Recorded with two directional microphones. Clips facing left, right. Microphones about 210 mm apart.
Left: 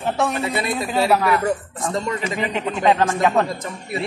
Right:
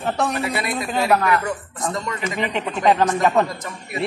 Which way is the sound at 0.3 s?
25° left (ahead or behind).